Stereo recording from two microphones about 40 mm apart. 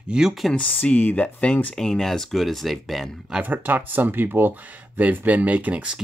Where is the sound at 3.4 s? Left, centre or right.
Right.